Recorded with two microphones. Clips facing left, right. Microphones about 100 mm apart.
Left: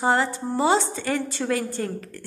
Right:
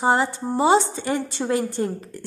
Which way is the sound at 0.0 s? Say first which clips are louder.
Right 2 dB; 20° right (ahead or behind).